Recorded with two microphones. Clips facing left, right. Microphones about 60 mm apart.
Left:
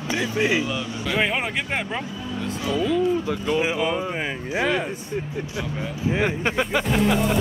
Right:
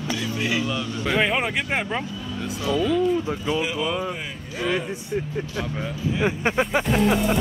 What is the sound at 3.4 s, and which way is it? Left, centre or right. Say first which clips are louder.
Speech: left 5 dB; left.